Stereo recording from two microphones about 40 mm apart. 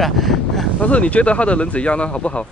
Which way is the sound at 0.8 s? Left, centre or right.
Left.